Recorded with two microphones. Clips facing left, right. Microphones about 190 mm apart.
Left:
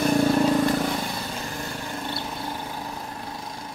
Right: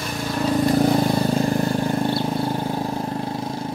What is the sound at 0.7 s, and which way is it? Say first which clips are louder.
Vehicle: right 8 dB; 40° right (ahead or behind).